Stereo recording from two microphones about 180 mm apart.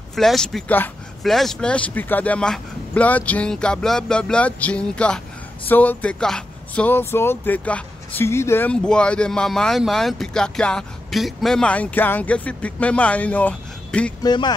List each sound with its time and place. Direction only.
0.1 s speech: centre (ahead or behind)
14.2 s speech: 25° left (ahead or behind)